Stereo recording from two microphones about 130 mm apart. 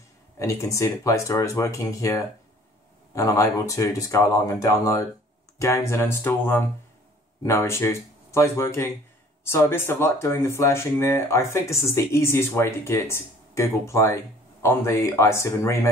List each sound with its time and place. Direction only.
0.4 s speech: 25° left (ahead or behind)